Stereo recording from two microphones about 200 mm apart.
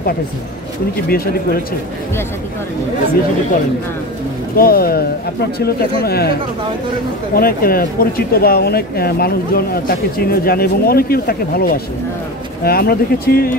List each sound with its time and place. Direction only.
1.0 s speech: 50° left (ahead or behind)
4.6 s speech: 50° left (ahead or behind)
7.3 s speech: 45° left (ahead or behind)